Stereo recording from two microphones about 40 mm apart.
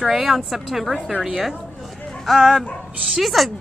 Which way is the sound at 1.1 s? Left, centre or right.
Centre.